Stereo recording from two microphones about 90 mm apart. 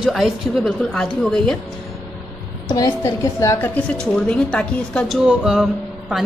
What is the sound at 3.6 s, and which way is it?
A woman's voice, 15° left (ahead or behind).